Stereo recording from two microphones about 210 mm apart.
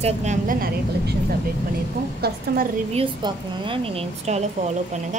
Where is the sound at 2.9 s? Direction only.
25° right (ahead or behind).